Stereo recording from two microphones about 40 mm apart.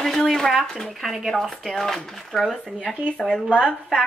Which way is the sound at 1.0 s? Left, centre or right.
Centre.